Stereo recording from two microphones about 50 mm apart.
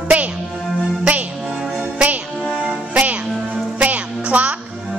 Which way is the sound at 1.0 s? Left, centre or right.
Right.